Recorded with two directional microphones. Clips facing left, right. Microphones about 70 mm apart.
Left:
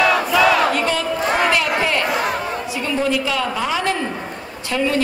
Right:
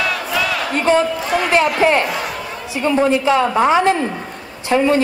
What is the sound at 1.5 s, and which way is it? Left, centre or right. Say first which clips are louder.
Chatter: right 5 dB; right.